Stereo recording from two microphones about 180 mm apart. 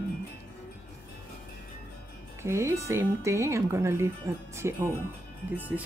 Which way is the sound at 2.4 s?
15° right (ahead or behind).